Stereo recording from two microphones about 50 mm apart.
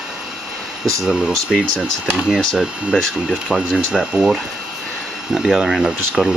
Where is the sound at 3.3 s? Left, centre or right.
Centre.